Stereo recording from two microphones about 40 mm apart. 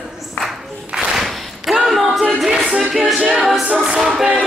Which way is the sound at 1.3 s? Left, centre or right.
Centre.